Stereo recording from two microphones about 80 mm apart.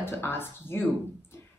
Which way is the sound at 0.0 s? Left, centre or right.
Left.